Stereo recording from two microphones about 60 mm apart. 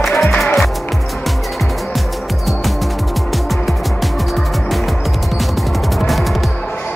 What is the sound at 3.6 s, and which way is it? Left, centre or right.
Music, centre.